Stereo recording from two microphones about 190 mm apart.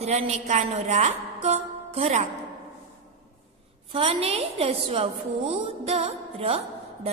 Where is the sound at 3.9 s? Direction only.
30° right (ahead or behind).